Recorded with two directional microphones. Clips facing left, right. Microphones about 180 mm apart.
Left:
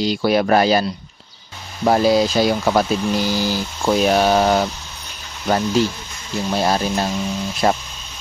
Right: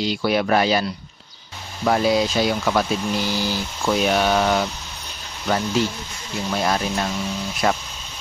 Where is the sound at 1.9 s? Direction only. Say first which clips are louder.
Left 4 dB; 35° left (ahead or behind).